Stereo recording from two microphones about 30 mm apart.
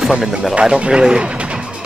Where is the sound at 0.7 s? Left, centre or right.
Right.